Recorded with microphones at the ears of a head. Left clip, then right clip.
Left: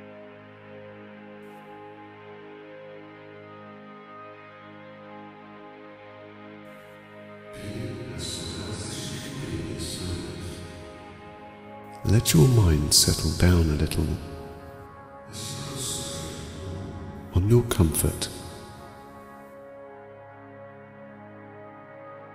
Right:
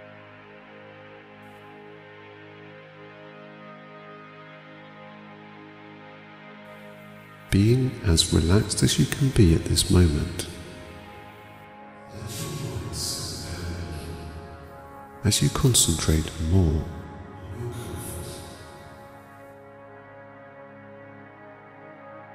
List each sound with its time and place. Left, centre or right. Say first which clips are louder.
7.4 s speech: right 14 dB; right
12.0 s speech: left 15 dB; left
15.2 s speech: right 13 dB; right
17.3 s speech: left 17 dB; left